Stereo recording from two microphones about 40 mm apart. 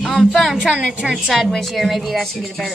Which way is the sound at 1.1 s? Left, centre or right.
Centre.